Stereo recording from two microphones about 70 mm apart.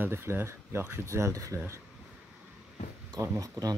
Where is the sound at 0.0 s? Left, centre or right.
Right.